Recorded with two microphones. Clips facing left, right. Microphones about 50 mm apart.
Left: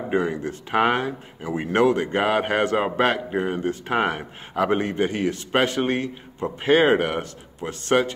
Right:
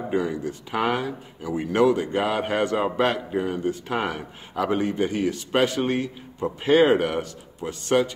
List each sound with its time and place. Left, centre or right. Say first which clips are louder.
0.1 s speech: left 2 dB; left